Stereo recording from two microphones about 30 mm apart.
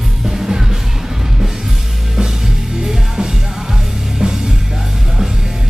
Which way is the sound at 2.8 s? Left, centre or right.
Right.